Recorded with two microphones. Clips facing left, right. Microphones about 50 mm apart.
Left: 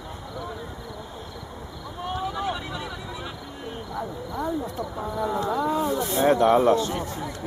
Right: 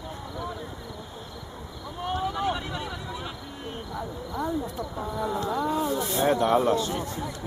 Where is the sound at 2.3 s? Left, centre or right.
Centre.